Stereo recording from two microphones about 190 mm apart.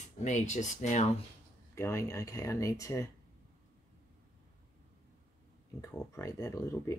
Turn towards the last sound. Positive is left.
turn(degrees=15)  # may be behind; listen again after turning